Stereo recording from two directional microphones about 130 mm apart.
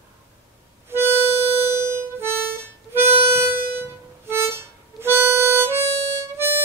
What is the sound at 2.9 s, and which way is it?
Harmonica, 15° right (ahead or behind).